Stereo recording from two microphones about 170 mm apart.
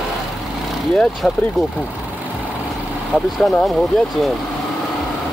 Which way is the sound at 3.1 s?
5° left (ahead or behind).